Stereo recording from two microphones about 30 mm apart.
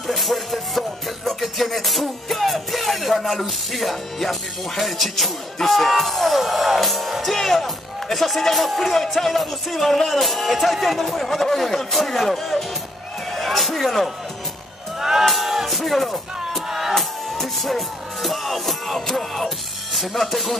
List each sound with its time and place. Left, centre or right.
0.0 s music: centre
6.4 s music: centre
6.8 s music: centre
11.1 s music: centre
15.0 s music: centre
15.2 s music: centre
16.6 s music: centre
16.9 s music: centre
19.9 s music: centre